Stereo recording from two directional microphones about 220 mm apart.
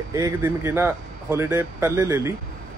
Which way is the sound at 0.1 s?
10° right (ahead or behind).